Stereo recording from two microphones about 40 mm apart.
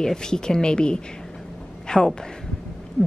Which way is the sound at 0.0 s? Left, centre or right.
Centre.